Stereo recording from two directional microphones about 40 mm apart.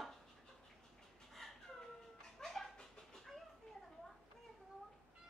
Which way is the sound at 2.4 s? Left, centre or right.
Centre.